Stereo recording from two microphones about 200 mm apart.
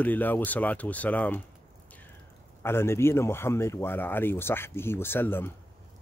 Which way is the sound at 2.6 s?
10° left (ahead or behind).